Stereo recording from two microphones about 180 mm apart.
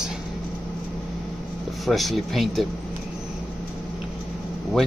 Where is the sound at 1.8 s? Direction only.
Centre (ahead or behind).